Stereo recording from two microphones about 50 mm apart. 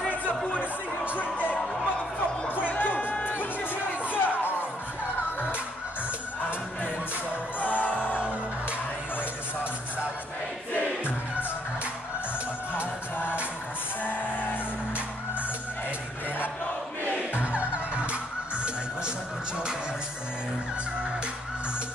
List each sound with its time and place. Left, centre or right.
0.1 s a sound: left
1.1 s music: left
4.1 s a sound: left
7.6 s music: left
8.2 s music: right
10.7 s music: left
14.0 s music: left
17.4 s music: right